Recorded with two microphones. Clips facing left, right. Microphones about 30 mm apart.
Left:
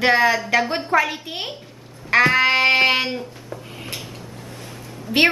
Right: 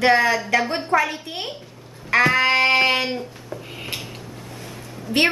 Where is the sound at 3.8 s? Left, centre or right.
Centre.